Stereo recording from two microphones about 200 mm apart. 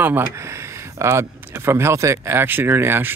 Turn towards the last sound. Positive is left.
turn(degrees=-10)  # may be behind; listen again after turning